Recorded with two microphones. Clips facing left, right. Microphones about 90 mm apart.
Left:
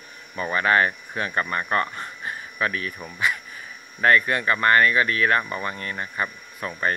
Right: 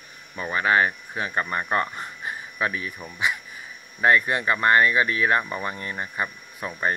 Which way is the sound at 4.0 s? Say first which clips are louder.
Left 1 dB; 15° right (ahead or behind).